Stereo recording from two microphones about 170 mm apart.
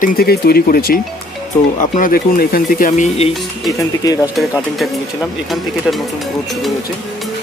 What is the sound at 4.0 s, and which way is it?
Speech, 20° left (ahead or behind).